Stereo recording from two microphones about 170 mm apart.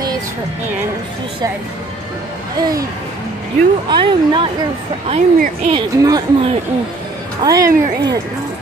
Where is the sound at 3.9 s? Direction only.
30° right (ahead or behind).